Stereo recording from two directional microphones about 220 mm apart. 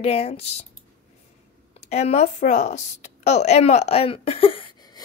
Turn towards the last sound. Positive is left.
turn(degrees=15)  # may be behind; listen again after turning